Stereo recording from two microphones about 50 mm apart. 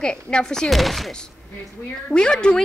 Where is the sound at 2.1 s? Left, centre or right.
Left.